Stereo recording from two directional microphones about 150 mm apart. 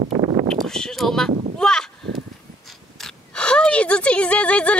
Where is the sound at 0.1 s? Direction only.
40° right (ahead or behind).